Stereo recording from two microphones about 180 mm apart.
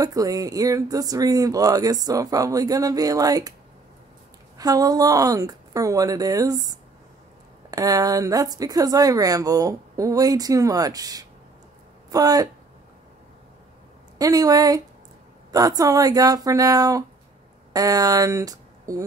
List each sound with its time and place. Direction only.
0.0 s speech: 20° right (ahead or behind)
4.6 s speech: 20° right (ahead or behind)
14.1 s speech: 20° right (ahead or behind)